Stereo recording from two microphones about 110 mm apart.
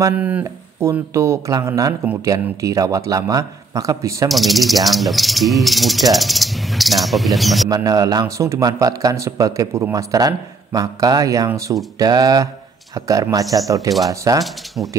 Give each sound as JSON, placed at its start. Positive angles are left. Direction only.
{"t": 0.1, "sound": "speech", "side_deg": -15}
{"t": 0.4, "sound": "speech", "side_deg": -25}
{"t": 4.3, "sound": "snake", "side_deg": 0}
{"t": 4.8, "sound": "speech", "side_deg": 0}
{"t": 7.7, "sound": "speech", "side_deg": -35}
{"t": 14.8, "sound": "speech", "side_deg": -10}